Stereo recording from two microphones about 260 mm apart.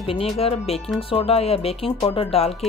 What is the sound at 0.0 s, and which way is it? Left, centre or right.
Speech, left.